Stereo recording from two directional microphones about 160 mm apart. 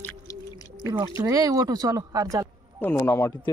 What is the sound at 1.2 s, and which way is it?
Speech, 20° right (ahead or behind).